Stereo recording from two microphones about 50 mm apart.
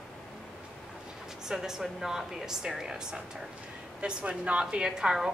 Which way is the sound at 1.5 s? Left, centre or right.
Centre.